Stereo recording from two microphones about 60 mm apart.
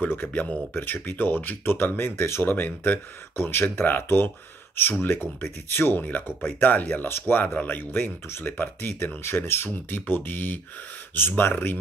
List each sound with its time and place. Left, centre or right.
0.0 s speech: left
0.3 s speech: left
2.5 s speech: left
7.1 s speech: left